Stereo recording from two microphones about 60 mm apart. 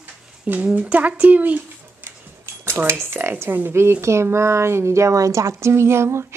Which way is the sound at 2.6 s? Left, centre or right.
Right.